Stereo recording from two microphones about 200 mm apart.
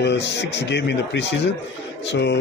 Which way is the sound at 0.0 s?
60° left (ahead or behind).